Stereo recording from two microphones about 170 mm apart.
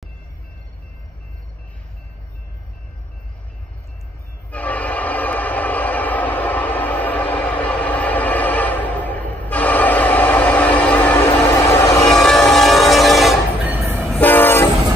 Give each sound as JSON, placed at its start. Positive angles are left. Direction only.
{"t": 4.5, "sound": "train", "side_deg": 10}
{"t": 12.1, "sound": "train", "side_deg": 0}
{"t": 13.7, "sound": "train", "side_deg": -10}
{"t": 14.1, "sound": "train", "side_deg": 10}